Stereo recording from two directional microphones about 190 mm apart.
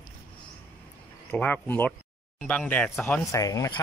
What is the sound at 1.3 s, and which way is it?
Speech, 10° left (ahead or behind).